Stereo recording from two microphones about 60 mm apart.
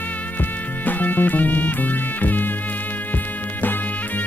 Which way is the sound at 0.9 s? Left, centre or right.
Left.